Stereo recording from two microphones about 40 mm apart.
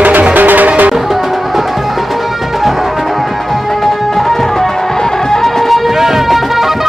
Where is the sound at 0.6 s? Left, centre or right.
Right.